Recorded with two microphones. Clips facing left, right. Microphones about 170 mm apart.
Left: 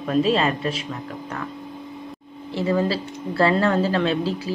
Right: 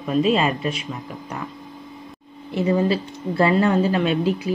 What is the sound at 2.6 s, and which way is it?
A woman's voice, 20° right (ahead or behind).